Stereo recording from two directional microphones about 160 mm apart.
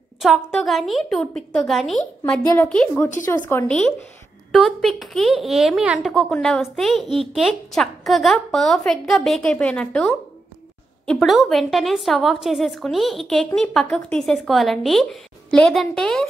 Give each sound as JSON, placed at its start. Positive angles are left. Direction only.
{"t": 0.2, "sound": "speech", "side_deg": 0}
{"t": 3.3, "sound": "speech", "side_deg": 15}
{"t": 4.5, "sound": "speech", "side_deg": 0}